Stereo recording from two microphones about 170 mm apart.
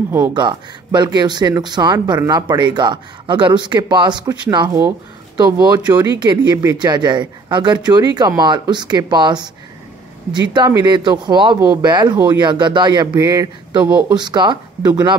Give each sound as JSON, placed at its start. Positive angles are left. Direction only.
{"t": 0.1, "sound": "speech", "side_deg": -25}